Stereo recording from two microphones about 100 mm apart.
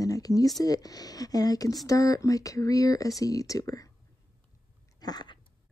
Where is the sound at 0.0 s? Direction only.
35° left (ahead or behind).